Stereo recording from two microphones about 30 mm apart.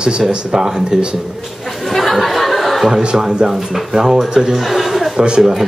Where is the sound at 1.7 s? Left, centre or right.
Centre.